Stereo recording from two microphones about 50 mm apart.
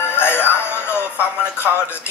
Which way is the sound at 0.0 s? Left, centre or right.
Left.